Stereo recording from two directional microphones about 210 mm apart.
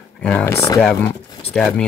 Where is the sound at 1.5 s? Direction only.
Centre (ahead or behind).